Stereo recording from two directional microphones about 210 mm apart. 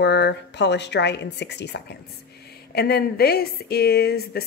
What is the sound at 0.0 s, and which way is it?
A woman's voice, 55° left (ahead or behind).